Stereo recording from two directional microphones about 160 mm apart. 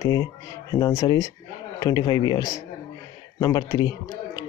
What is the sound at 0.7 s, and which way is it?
Speech, 25° left (ahead or behind).